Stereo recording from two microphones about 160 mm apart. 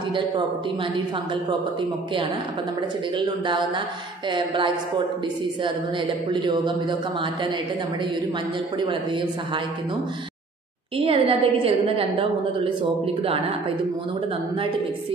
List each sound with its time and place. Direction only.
3.4 s a woman's voice: 30° right (ahead or behind)
6.3 s a man's voice: 30° right (ahead or behind)
8.7 s a man's voice: 30° right (ahead or behind)
11.0 s a woman's voice: 35° right (ahead or behind)